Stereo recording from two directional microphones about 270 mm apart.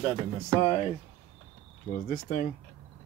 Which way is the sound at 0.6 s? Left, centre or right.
Left.